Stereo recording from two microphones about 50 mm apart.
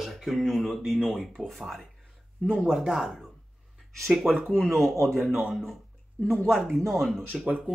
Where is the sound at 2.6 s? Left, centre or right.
Centre.